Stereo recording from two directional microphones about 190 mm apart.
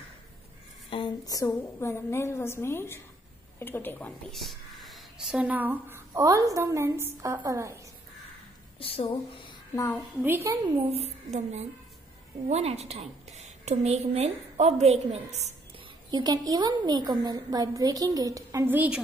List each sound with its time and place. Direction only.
0.8 s a woman's voice: 25° left (ahead or behind); by 7.7 s 15° right (ahead or behind)
8.7 s speech: 30° left (ahead or behind)
10.2 s a woman's voice: 15° right (ahead or behind)
10.9 s a woman's voice: 35° right (ahead or behind)
16.1 s a woman's voice: 20° right (ahead or behind)